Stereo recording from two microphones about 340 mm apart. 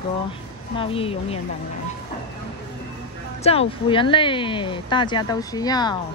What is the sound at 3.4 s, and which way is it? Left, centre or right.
A woman's voice, centre.